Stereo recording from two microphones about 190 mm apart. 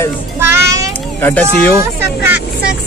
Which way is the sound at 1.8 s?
10° right (ahead or behind).